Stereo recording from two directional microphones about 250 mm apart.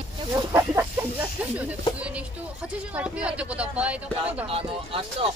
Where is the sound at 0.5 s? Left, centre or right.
Centre.